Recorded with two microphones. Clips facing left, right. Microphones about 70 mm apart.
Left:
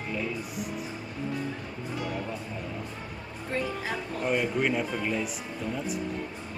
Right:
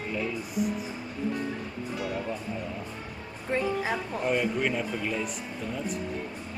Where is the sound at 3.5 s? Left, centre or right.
Right.